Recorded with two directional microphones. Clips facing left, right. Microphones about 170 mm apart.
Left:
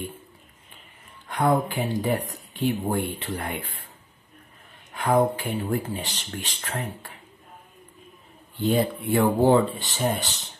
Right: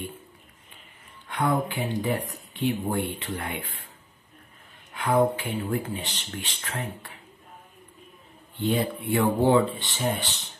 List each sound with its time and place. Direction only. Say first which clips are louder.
1.3 s speech: left 3 dB; 40° left (ahead or behind)
4.9 s speech: left 1 dB; 40° left (ahead or behind)
8.6 s speech: left 3 dB; 40° left (ahead or behind)